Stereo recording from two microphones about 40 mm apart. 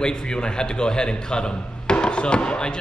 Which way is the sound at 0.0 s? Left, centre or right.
Left.